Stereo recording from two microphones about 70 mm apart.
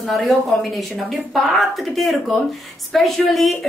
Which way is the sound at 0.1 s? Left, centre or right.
Centre.